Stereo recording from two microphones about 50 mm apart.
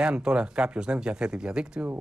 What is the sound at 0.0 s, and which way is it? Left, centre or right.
Speech, centre.